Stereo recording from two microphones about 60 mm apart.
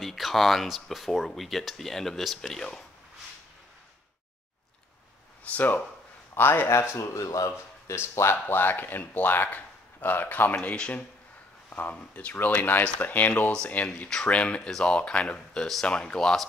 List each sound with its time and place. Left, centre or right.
0.0 s speech: centre
5.4 s speech: left
6.3 s speech: left
8.5 s speech: left; by 16.4 s centre